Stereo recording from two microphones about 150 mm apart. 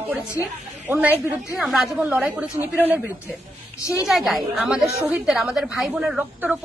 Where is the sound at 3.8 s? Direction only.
20° left (ahead or behind).